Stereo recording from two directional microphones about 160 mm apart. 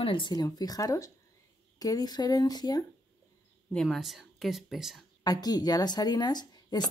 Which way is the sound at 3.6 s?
Centre (ahead or behind).